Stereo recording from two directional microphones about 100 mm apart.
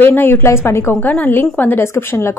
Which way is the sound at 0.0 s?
20° left (ahead or behind).